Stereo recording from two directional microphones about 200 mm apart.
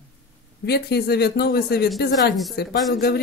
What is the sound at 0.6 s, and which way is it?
A man's voice, 55° left (ahead or behind).